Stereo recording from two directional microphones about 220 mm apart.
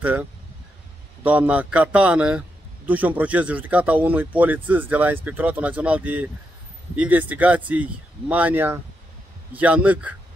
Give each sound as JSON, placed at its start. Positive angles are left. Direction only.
{"t": 0.0, "sound": "speech", "side_deg": -5}